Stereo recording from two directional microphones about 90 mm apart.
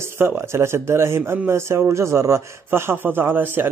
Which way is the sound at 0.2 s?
30° right (ahead or behind).